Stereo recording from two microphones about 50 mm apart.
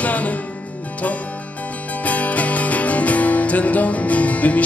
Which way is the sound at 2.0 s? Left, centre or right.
Left.